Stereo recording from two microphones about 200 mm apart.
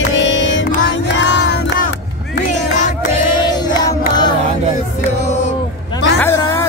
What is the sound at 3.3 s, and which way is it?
Music, 20° left (ahead or behind).